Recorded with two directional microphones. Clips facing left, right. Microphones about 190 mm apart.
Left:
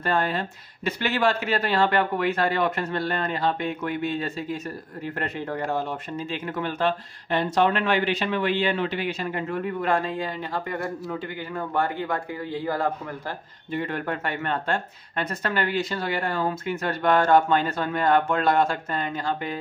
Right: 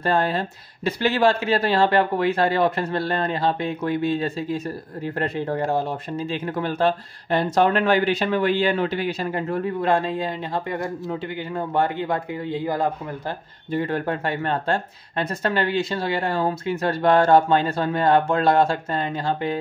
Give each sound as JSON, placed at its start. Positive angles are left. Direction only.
{"t": 0.0, "sound": "speech", "side_deg": -30}
{"t": 13.7, "sound": "speech", "side_deg": -35}